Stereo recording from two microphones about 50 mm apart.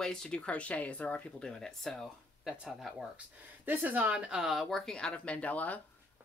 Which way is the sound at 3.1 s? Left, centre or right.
Right.